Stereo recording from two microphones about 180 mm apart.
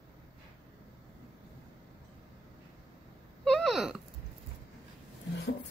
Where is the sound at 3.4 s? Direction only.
5° left (ahead or behind).